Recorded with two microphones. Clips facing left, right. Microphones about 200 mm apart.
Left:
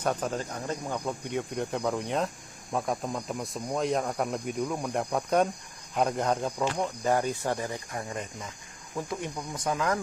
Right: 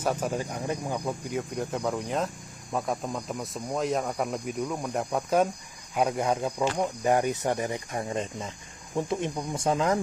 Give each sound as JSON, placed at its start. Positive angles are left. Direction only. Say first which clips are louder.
{"t": 0.0, "sound": "speech", "louder": "right 1 dB", "side_deg": -5}